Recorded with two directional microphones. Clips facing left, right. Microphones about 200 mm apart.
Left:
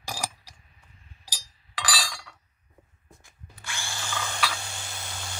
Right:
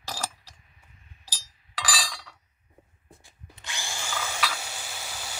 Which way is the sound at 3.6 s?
15° right (ahead or behind).